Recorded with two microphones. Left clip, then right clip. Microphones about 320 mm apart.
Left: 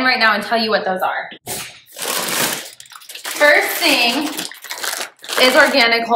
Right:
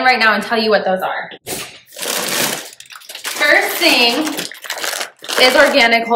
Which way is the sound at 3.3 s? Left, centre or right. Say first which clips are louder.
Even; centre.